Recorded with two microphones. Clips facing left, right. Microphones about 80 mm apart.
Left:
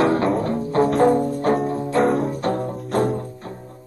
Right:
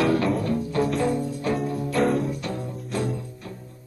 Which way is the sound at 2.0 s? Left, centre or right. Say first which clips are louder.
Left 5 dB; left.